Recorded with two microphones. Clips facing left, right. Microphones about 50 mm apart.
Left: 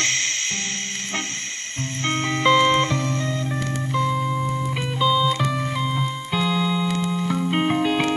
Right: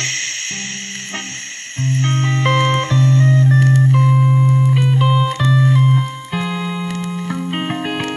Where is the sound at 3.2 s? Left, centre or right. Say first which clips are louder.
Right 11 dB; right.